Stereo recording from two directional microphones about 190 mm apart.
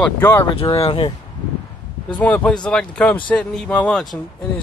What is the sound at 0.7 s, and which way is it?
Speech, 30° left (ahead or behind).